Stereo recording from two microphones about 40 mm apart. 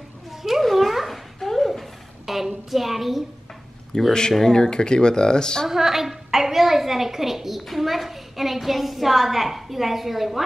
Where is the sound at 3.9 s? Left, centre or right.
Left.